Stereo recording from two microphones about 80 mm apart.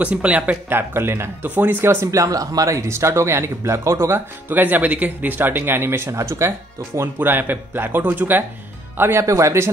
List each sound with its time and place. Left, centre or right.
0.0 s speech: centre; by 4.2 s right
4.5 s speech: right
7.2 s speech: right
9.2 s speech: right